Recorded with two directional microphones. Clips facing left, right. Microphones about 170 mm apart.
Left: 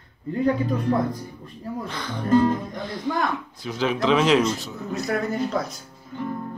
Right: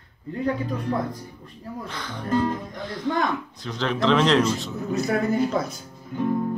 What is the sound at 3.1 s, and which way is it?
Speech, 5° left (ahead or behind).